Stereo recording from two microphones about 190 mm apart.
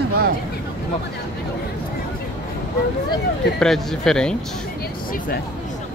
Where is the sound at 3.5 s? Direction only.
Centre (ahead or behind).